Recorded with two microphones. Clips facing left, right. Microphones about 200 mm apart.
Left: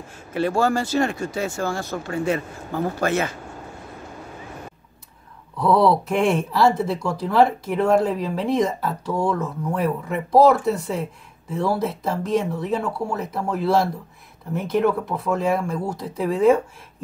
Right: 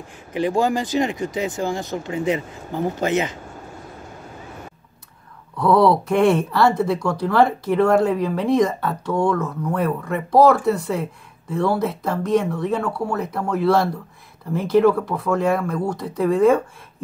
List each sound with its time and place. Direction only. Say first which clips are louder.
0.3 s speech: right 1 dB; 15° right (ahead or behind)
5.7 s speech: right 2 dB; centre (ahead or behind)